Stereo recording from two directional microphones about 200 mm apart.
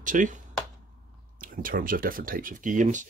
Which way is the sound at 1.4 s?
45° right (ahead or behind).